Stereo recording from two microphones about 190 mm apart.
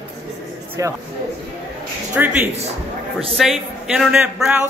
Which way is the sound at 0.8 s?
15° right (ahead or behind).